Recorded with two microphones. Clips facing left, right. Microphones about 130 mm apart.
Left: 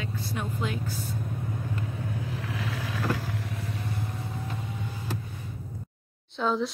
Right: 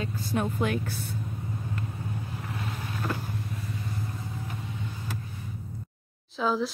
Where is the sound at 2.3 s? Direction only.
90° left.